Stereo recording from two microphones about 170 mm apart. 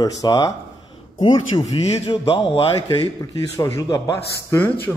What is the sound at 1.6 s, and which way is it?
A man's voice, 35° left (ahead or behind).